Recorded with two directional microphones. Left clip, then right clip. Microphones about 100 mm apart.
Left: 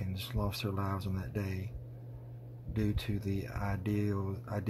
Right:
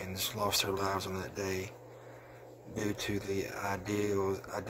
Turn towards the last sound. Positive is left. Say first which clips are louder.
# right 7 dB
turn(degrees=-30)  # may be behind; listen again after turning